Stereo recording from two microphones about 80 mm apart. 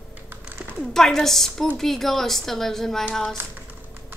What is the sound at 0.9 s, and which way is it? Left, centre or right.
Speech, centre.